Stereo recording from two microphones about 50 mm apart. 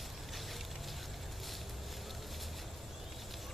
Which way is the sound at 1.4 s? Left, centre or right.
Centre.